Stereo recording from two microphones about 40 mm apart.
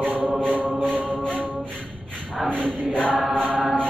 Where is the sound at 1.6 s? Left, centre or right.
Centre.